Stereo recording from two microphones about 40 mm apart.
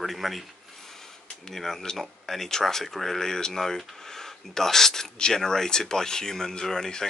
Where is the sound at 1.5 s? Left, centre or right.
Centre.